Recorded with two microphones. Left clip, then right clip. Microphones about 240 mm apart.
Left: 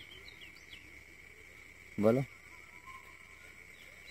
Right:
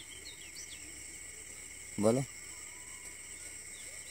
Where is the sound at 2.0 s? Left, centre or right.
Centre.